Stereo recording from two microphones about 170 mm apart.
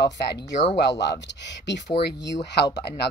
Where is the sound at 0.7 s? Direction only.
90° left.